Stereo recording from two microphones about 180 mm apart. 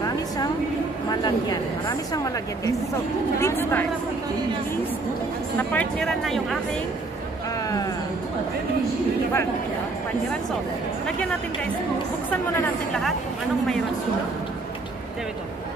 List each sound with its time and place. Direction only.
1.1 s a woman's voice: 20° left (ahead or behind)
5.6 s speech: 10° left (ahead or behind)
12.5 s speech: 5° left (ahead or behind)